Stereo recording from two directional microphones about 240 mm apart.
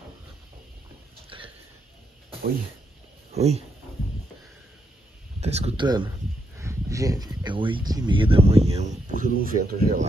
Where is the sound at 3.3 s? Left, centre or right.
Right.